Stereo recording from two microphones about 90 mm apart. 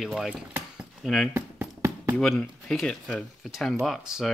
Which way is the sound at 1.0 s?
5° left (ahead or behind).